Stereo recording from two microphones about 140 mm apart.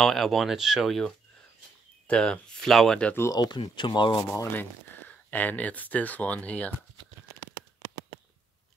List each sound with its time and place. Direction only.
0.0 s speech: centre (ahead or behind)
3.2 s speech: 25° left (ahead or behind)
4.3 s speech: 15° left (ahead or behind)